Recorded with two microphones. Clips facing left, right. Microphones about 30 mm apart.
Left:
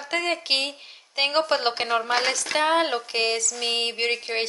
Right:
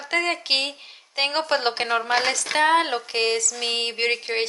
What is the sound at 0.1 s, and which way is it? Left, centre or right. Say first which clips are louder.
Speech: right 2 dB; centre.